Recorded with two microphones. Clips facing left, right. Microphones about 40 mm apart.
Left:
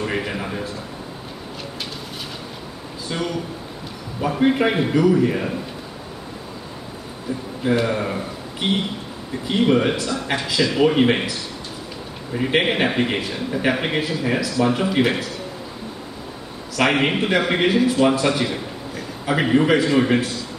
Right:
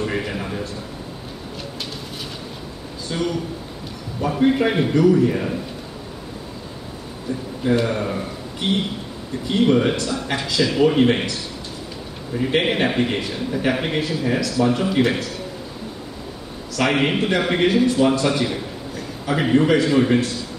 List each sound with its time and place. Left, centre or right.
0.0 s a man's voice: centre
3.1 s a man's voice: centre
7.7 s a man's voice: centre
10.8 s speech: centre
12.4 s a man's voice: centre
16.7 s a man's voice: centre